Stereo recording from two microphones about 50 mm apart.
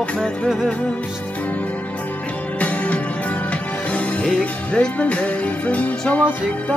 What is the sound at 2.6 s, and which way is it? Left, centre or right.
Music, left.